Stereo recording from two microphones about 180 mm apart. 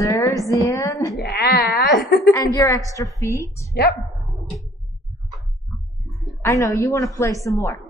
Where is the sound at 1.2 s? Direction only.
65° left (ahead or behind).